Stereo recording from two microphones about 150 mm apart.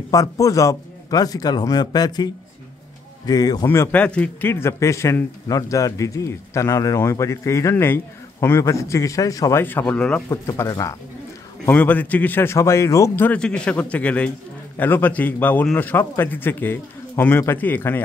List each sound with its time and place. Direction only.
0.1 s speech: 20° left (ahead or behind)
3.6 s speech: 15° left (ahead or behind)
10.4 s a man's voice: 20° left (ahead or behind)